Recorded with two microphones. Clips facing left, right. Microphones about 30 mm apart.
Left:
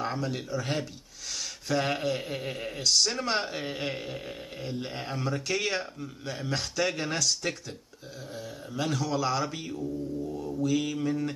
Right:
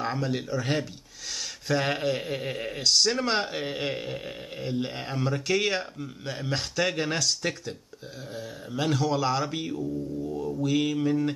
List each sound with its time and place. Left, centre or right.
0.0 s mantra: right
1.3 s speech: centre
3.0 s mantra: right
3.4 s a man's voice: centre
7.4 s mantra: centre
8.7 s mantra: right
9.4 s speech: centre
10.6 s mantra: right